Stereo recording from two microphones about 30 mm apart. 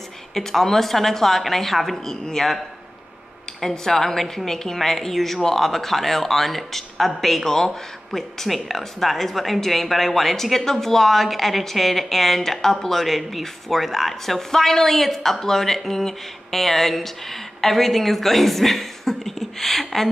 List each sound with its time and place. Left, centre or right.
0.3 s speech: centre
2.2 s speech: centre
3.6 s speech: centre
7.4 s speech: centre